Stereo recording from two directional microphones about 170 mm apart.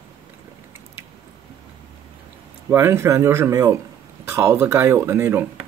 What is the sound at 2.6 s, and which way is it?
Speech, 15° right (ahead or behind).